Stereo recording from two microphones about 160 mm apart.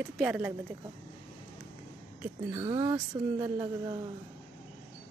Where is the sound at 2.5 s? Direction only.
25° right (ahead or behind).